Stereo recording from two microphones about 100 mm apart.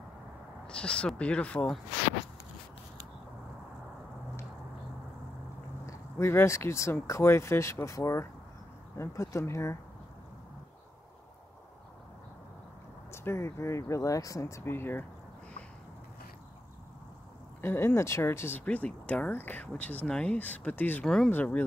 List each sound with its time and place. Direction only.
0.7 s speech: 10° left (ahead or behind)
5.9 s speech: 25° left (ahead or behind)
13.1 s speech: 25° left (ahead or behind)
17.6 s speech: 20° left (ahead or behind)
21.0 s speech: 5° left (ahead or behind)